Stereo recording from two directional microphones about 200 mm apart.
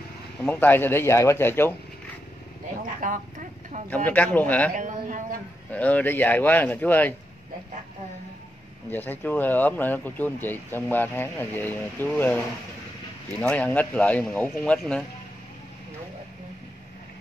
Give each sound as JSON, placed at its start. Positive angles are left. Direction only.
{"t": 0.4, "sound": "speech", "side_deg": 5}
{"t": 3.0, "sound": "a sound", "side_deg": -40}
{"t": 3.9, "sound": "speech", "side_deg": 5}
{"t": 4.7, "sound": "a sound", "side_deg": -40}
{"t": 5.7, "sound": "speech", "side_deg": 5}
{"t": 8.9, "sound": "speech", "side_deg": 10}
{"t": 13.4, "sound": "speech", "side_deg": 5}